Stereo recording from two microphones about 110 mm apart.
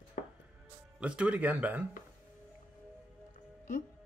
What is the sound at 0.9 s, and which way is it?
Speech, 10° right (ahead or behind).